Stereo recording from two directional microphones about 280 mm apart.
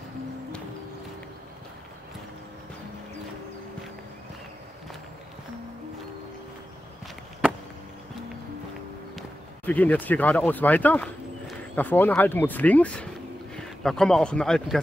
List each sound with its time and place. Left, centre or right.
9.7 s speech: centre